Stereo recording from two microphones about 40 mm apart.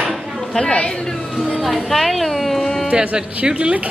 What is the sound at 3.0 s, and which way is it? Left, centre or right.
Speech, right.